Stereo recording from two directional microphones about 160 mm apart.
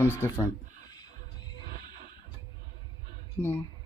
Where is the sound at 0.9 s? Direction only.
25° left (ahead or behind).